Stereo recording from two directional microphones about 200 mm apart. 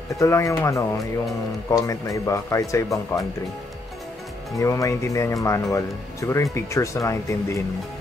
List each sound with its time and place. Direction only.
0.2 s speech: 15° left (ahead or behind)
4.6 s speech: 15° left (ahead or behind)